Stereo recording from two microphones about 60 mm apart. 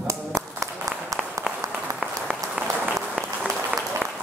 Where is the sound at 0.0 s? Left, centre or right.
Right.